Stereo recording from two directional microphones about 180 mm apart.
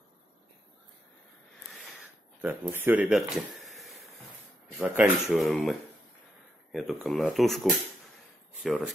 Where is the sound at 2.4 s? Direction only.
10° right (ahead or behind).